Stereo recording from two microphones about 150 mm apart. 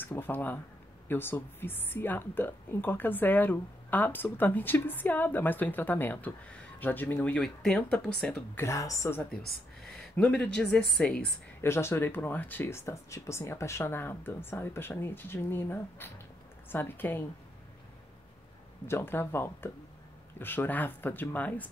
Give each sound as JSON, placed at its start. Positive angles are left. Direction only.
{"t": 0.0, "sound": "speech", "side_deg": 15}
{"t": 8.5, "sound": "speech", "side_deg": 20}
{"t": 9.9, "sound": "a woman's voice", "side_deg": 5}
{"t": 11.6, "sound": "speech", "side_deg": 15}
{"t": 18.9, "sound": "speech", "side_deg": 15}